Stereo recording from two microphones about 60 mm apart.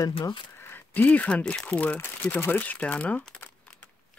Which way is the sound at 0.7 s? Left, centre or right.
Left.